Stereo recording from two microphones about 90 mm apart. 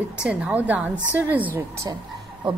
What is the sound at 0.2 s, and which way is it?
A woman's voice, 10° right (ahead or behind).